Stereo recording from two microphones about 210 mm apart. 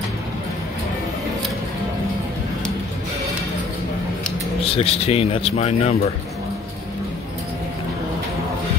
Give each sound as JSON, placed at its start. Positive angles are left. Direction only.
{"t": 4.6, "sound": "speech", "side_deg": 30}